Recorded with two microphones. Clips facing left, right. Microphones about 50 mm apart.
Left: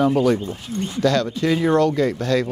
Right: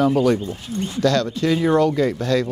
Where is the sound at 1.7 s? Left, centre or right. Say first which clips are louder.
Even; centre.